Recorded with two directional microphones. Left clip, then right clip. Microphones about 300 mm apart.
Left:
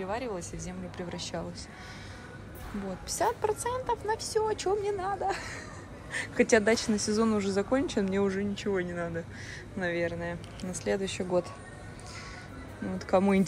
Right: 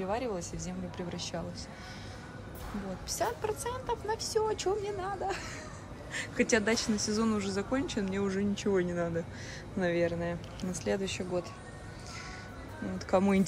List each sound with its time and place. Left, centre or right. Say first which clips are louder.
0.0 s speech: even; centre
3.1 s speech: left 4 dB; centre
13.0 s speech: left 2 dB; centre